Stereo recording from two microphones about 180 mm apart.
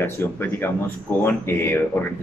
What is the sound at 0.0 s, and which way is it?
Speech, 10° left (ahead or behind).